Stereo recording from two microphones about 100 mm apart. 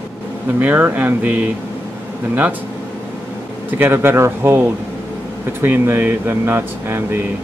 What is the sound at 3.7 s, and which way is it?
Speech, 20° right (ahead or behind).